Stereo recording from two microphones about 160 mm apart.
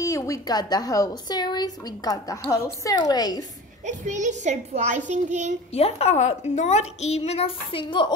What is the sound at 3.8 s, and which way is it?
A child's voice, 50° right (ahead or behind).